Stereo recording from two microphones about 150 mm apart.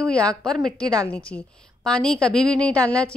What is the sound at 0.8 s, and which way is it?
Speech, 25° right (ahead or behind).